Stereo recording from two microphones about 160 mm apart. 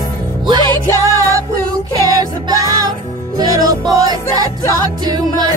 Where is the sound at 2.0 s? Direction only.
25° right (ahead or behind).